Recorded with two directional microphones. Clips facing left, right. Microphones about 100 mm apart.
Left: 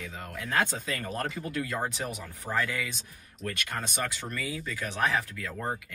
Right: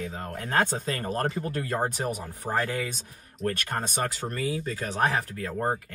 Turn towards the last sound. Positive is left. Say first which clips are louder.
# right 6 dB
turn(degrees=-45)  # may be behind; listen again after turning